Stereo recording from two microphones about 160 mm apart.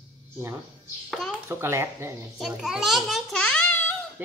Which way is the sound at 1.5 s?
15° right (ahead or behind).